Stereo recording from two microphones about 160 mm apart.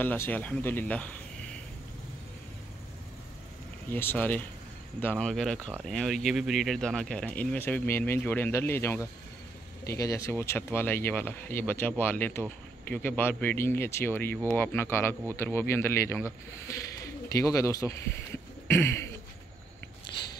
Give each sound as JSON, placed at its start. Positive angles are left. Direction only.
{"t": 0.0, "sound": "speech", "side_deg": 10}
{"t": 3.9, "sound": "speech", "side_deg": 10}